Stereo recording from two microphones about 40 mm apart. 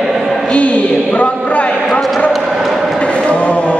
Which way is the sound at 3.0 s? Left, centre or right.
Left.